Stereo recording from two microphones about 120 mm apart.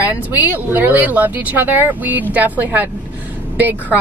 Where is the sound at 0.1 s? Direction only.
15° right (ahead or behind).